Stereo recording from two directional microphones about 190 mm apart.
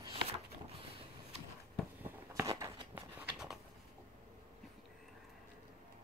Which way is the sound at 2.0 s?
15° right (ahead or behind).